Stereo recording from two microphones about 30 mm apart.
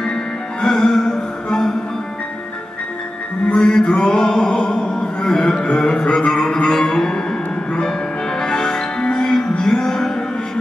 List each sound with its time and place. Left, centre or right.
0.0 s music: left
3.5 s music: left
5.0 s a sound: centre
5.6 s music: left
6.1 s music: centre
8.4 s music: centre